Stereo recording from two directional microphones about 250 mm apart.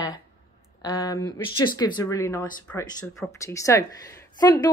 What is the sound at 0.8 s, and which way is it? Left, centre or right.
Speech, centre.